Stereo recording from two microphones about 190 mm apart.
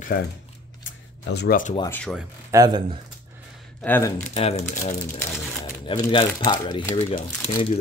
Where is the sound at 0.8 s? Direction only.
60° left (ahead or behind).